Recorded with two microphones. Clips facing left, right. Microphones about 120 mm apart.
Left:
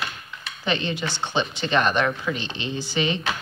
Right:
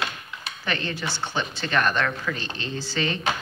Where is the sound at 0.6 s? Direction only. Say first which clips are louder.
Left 3 dB; 20° left (ahead or behind).